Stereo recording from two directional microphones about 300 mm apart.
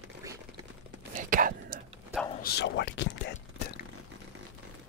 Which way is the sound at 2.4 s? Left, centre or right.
Left.